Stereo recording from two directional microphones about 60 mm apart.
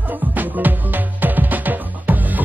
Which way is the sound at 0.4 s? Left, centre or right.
Right.